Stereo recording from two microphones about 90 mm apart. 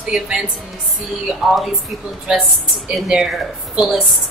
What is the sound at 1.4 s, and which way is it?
Speech, centre (ahead or behind).